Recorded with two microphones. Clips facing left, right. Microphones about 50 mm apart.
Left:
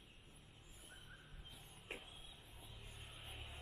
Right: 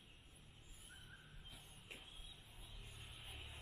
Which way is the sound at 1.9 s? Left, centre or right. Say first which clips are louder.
Left 6 dB; left.